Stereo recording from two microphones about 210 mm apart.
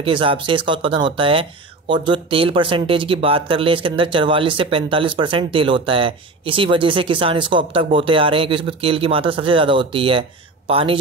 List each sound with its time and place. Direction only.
0.0 s speech: 25° right (ahead or behind)